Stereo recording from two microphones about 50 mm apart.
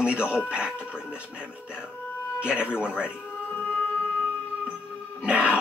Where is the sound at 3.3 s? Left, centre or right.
Left.